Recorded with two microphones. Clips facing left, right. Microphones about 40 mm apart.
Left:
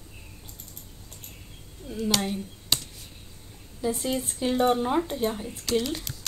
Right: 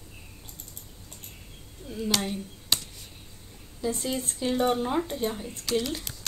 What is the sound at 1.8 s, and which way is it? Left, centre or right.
Speech, centre.